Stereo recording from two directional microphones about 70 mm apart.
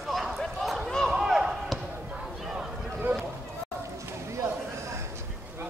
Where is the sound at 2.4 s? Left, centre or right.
Centre.